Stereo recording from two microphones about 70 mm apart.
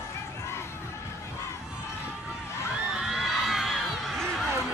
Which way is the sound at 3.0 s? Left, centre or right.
Centre.